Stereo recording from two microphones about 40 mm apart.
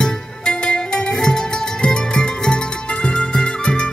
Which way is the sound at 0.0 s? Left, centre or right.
Left.